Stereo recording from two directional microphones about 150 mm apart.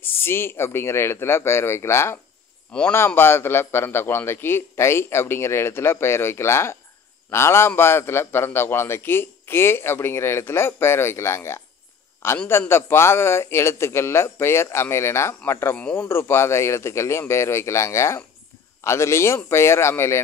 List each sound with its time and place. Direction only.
0.0 s a man's voice: 15° left (ahead or behind)